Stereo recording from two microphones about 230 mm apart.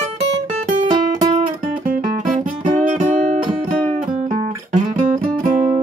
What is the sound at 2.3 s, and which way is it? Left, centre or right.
Music, right.